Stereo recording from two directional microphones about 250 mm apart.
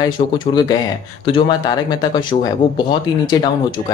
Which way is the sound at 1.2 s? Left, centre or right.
Centre.